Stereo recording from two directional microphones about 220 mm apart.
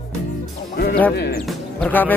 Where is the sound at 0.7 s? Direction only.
45° left (ahead or behind).